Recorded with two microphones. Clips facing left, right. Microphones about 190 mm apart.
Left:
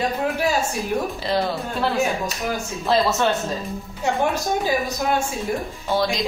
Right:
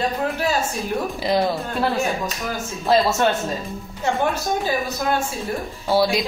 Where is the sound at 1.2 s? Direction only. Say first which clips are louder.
Right 2 dB; 15° right (ahead or behind).